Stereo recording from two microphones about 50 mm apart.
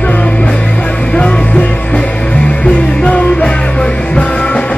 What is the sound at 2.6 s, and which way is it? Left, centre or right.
Music, left.